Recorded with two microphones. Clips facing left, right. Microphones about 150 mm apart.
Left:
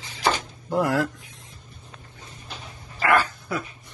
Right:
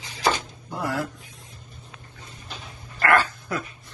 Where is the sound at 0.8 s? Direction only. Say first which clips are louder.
Left 6 dB; 90° left.